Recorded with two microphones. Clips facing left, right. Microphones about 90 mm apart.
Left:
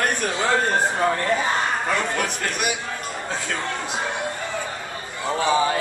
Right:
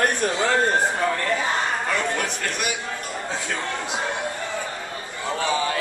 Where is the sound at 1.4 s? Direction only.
5° left (ahead or behind).